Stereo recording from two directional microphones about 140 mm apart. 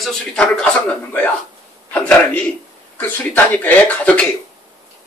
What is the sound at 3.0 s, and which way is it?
Speech, 10° left (ahead or behind).